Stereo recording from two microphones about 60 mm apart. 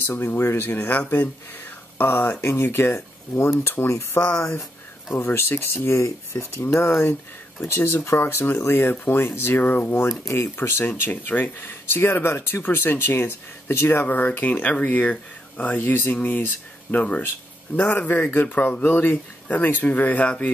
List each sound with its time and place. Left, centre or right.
0.0 s speech: left
5.1 s speech: left
10.9 s speech: left